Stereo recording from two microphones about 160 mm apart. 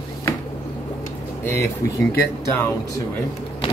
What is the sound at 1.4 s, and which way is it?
Speech, 15° left (ahead or behind).